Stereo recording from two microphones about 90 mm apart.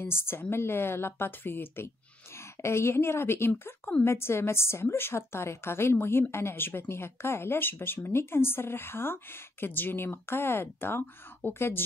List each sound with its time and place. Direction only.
0.0 s a woman's voice: 25° left (ahead or behind)